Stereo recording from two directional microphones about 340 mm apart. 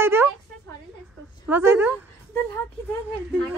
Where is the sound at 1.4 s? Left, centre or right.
Centre.